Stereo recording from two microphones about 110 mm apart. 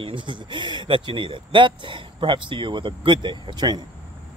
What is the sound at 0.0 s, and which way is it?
Speech, 50° right (ahead or behind).